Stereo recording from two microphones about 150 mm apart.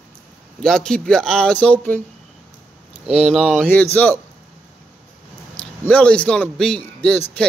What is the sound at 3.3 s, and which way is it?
Speech, centre (ahead or behind).